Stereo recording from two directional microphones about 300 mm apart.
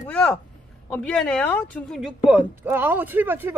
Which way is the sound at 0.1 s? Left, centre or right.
Centre.